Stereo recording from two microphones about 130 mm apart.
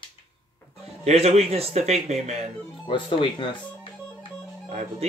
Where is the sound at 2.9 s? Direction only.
40° left (ahead or behind).